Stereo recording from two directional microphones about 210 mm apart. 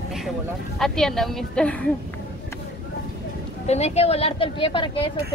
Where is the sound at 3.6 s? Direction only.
30° left (ahead or behind).